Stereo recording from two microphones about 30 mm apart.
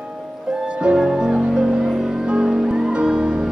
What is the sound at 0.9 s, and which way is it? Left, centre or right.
Music, centre.